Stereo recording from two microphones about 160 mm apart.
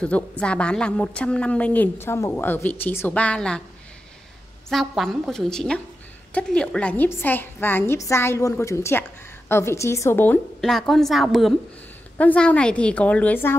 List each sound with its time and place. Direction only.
0.0 s a woman's voice: 5° left (ahead or behind)
4.6 s a woman's voice: centre (ahead or behind)
10.6 s a woman's voice: centre (ahead or behind)